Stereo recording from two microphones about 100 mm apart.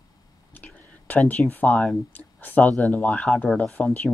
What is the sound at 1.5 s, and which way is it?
Speech, 15° left (ahead or behind).